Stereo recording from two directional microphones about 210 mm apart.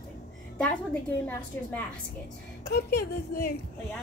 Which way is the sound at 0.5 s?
5° left (ahead or behind).